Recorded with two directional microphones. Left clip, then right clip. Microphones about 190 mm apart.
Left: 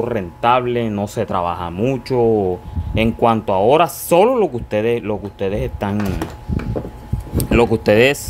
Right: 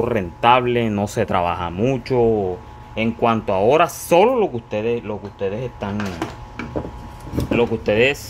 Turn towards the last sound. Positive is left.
turn(degrees=45)  # may be behind; listen again after turning